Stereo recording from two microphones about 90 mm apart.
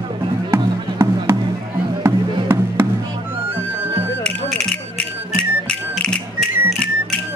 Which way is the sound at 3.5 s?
90° right.